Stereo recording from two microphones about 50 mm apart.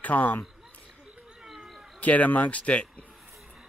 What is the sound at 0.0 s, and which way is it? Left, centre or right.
Speech, left.